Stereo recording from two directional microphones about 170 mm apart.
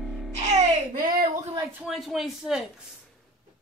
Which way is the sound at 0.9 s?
50° right (ahead or behind).